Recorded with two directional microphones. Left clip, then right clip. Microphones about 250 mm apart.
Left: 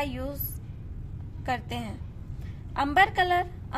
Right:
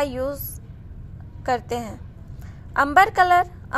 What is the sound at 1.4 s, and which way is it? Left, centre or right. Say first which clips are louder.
A woman's voice: right 8 dB; centre.